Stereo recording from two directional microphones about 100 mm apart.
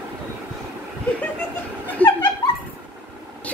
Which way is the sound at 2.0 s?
15° left (ahead or behind).